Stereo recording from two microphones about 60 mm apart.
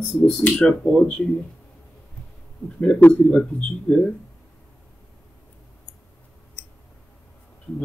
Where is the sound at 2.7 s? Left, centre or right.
Left.